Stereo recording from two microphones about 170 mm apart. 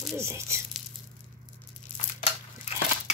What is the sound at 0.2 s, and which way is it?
Speech, 15° right (ahead or behind).